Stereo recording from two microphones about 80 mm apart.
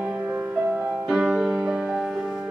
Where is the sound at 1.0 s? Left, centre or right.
Centre.